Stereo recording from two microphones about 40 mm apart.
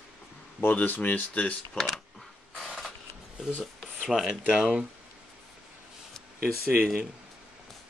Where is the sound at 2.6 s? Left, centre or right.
Centre.